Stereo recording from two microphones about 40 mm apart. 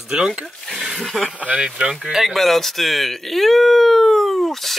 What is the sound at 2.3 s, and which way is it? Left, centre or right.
Speech, centre.